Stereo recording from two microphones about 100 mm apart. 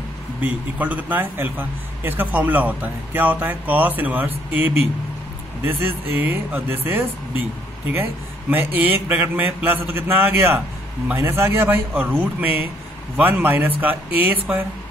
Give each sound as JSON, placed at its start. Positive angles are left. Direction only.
{"t": 0.4, "sound": "a man's voice", "side_deg": -15}